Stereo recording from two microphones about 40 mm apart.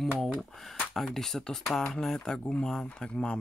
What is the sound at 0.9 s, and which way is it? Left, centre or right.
Speech, centre.